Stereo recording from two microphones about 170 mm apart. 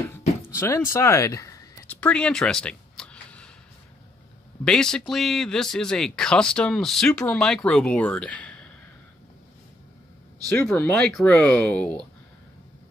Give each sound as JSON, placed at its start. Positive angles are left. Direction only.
{"t": 0.6, "sound": "speech", "side_deg": 15}
{"t": 2.0, "sound": "a sound", "side_deg": 5}
{"t": 4.6, "sound": "speech", "side_deg": 5}
{"t": 10.5, "sound": "speech", "side_deg": 10}